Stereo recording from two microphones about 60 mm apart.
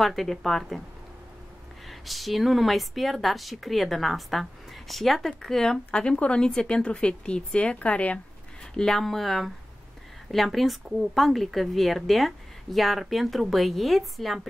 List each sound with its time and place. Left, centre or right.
0.0 s speech: centre
1.9 s a woman's voice: centre; by 8.2 s left
8.7 s speech: centre